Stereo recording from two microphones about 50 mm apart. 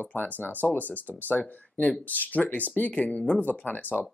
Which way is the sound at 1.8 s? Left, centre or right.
Left.